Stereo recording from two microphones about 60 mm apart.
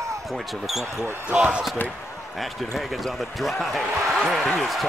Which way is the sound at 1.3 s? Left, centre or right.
Centre.